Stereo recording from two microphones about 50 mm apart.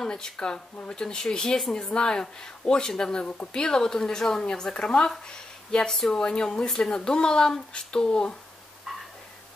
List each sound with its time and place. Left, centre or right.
0.0 s speech: centre